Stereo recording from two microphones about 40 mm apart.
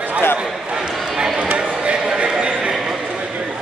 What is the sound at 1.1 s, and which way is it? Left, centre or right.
Speech, centre.